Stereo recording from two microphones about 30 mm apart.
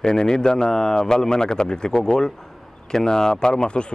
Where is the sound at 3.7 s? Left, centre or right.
Left.